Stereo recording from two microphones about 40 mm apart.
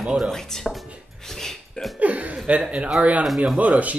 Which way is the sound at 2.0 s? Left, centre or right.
Right.